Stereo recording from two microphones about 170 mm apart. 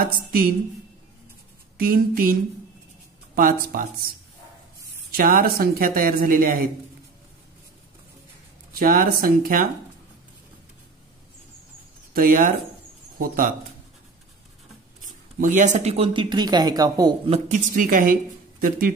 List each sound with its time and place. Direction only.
0.0 s a woman's voice: 60° right (ahead or behind)
1.8 s speech: 60° right (ahead or behind)
3.3 s speech: 55° right (ahead or behind)
5.1 s speech: 60° right (ahead or behind)
8.7 s speech: 55° right (ahead or behind)
12.1 s a woman's voice: 55° right (ahead or behind)
15.0 s speech: 50° right (ahead or behind); by 17.1 s 20° right (ahead or behind)
17.3 s a woman's voice: 50° right (ahead or behind)